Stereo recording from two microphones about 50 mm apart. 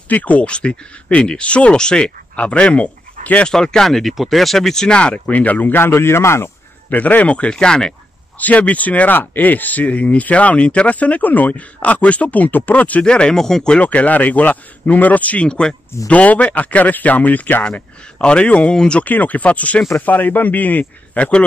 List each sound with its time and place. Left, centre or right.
0.1 s speech: left
3.4 s speech: centre
5.3 s speech: left
6.9 s speech: left; by 7.9 s centre
8.4 s speech: left
13.0 s speech: centre
13.7 s speech: left
17.6 s speech: left
19.0 s speech: left